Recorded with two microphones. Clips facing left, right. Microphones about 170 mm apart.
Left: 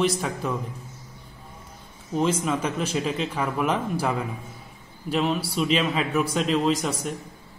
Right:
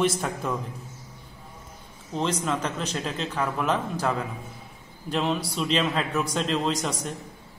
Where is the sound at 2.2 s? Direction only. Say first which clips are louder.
Left 3 dB; 5° left (ahead or behind).